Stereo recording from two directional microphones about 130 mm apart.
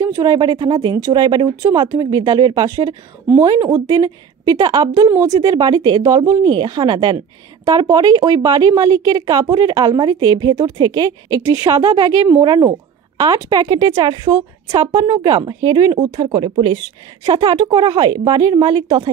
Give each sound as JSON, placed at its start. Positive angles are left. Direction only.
{"t": 0.0, "sound": "speech", "side_deg": -30}
{"t": 12.4, "sound": "speech", "side_deg": -35}
{"t": 14.8, "sound": "speech", "side_deg": -25}